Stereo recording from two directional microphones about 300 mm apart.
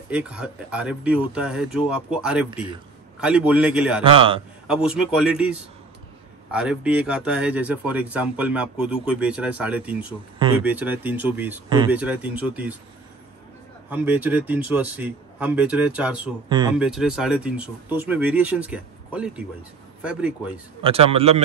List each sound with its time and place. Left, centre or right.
0.1 s a man's voice: centre
4.0 s a man's voice: centre
4.6 s a man's voice: centre
6.5 s a man's voice: centre
13.8 s a man's voice: centre
20.8 s a man's voice: centre